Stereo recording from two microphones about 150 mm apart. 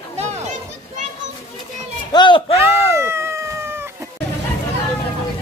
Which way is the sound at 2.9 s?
15° right (ahead or behind).